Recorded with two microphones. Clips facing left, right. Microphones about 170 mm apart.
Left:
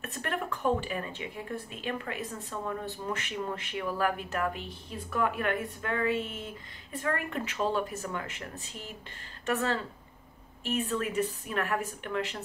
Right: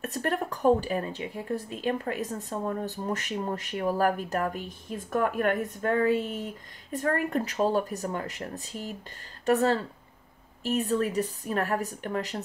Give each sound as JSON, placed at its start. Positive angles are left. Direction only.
{"t": 0.0, "sound": "speech", "side_deg": -40}